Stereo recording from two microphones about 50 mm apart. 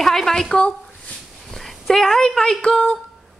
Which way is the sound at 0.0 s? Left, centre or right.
Centre.